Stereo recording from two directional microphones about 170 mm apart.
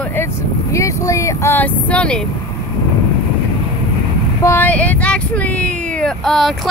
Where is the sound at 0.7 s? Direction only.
20° left (ahead or behind).